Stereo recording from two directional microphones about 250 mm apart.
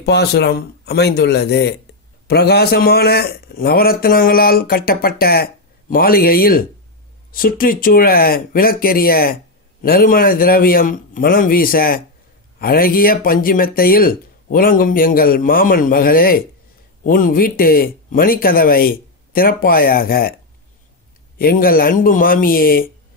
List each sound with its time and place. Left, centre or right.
0.0 s speech: left
21.4 s speech: left